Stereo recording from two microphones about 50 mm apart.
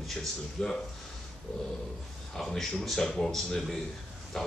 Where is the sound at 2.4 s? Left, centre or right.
Centre.